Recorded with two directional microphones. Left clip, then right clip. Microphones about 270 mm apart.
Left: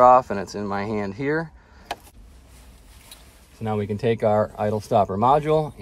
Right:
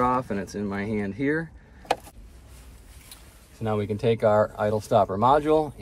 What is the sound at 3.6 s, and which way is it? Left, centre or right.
Speech, left.